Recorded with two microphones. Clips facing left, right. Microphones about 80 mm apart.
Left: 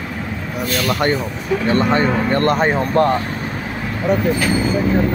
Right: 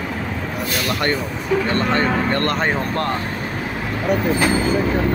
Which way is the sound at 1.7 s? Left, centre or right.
Centre.